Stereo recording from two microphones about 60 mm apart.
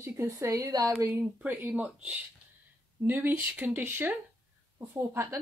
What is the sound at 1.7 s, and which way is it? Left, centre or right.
Speech, right.